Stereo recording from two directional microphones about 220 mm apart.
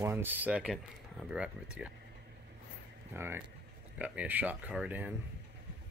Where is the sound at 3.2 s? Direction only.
10° right (ahead or behind).